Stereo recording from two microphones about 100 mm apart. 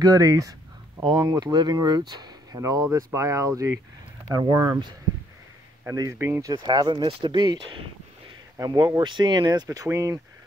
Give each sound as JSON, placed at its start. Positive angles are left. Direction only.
{"t": 0.0, "sound": "speech", "side_deg": -40}
{"t": 5.9, "sound": "speech", "side_deg": -30}
{"t": 6.5, "sound": "speech", "side_deg": -45}
{"t": 7.1, "sound": "speech", "side_deg": -70}
{"t": 7.3, "sound": "speech", "side_deg": -45}
{"t": 9.7, "sound": "speech", "side_deg": -30}